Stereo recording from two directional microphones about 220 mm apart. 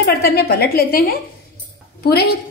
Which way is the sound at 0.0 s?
45° left (ahead or behind).